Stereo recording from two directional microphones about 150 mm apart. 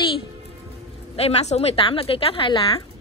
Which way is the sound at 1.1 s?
45° left (ahead or behind).